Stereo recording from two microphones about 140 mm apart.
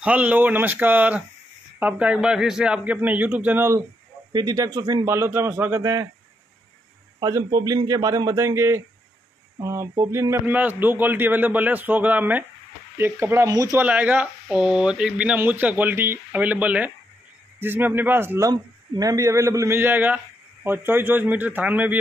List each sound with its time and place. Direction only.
0.0 s speech: 10° right (ahead or behind)
4.3 s a man's voice: 30° right (ahead or behind)
7.2 s a man's voice: 30° right (ahead or behind)
13.7 s a man's voice: 10° right (ahead or behind)